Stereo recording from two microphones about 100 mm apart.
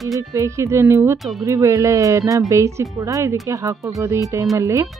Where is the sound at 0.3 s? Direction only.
30° right (ahead or behind).